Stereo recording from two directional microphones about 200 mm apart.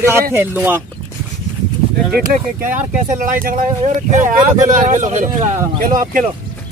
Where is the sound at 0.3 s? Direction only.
10° right (ahead or behind).